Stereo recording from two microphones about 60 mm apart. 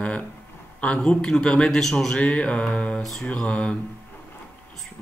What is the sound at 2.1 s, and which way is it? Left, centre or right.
Speech, centre.